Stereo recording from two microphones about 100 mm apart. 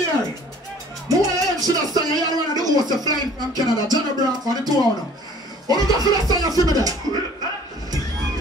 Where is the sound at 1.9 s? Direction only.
40° right (ahead or behind).